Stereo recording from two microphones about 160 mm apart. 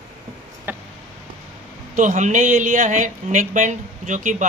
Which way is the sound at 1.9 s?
50° right (ahead or behind).